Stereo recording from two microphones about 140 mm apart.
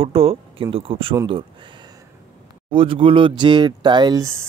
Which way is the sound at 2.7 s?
40° right (ahead or behind).